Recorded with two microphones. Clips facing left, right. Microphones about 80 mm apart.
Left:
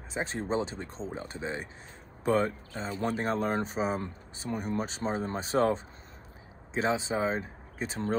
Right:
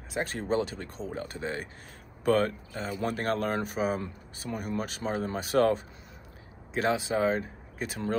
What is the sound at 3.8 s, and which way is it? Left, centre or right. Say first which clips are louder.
Speech: right 1 dB; left.